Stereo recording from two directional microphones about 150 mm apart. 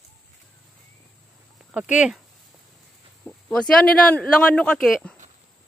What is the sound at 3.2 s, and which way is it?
Speech, 5° left (ahead or behind).